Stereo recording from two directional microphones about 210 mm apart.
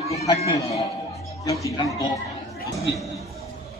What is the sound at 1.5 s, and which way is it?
Speech, 15° right (ahead or behind).